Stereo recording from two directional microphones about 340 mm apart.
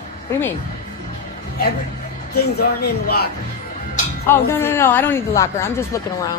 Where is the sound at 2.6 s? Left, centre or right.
Left.